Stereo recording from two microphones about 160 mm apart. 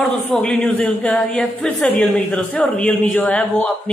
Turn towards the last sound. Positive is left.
turn(degrees=10)  # may be behind; listen again after turning